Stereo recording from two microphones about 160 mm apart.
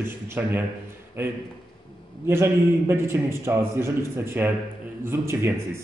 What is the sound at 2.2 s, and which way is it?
Speech, 15° right (ahead or behind).